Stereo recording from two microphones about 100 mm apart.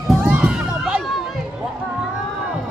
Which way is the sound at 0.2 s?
15° right (ahead or behind).